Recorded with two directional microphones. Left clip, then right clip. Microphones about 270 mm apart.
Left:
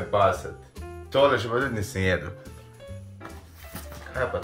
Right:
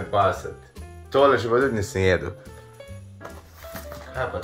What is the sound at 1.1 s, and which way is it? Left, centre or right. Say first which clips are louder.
Speech: right 3 dB; centre.